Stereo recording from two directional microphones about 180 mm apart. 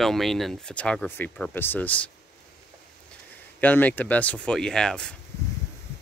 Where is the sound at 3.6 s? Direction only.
10° left (ahead or behind).